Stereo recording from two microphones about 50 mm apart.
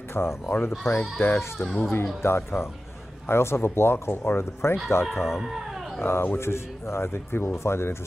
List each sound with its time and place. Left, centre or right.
0.1 s speech: left
1.6 s speech: centre
2.2 s speech: left
4.1 s speech: left
5.0 s speech: centre
5.9 s speech: left
7.5 s speech: left